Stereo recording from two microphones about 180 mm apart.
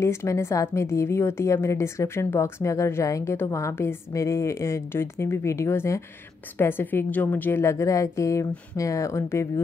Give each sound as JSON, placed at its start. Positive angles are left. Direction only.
{"t": 0.0, "sound": "a woman's voice", "side_deg": 15}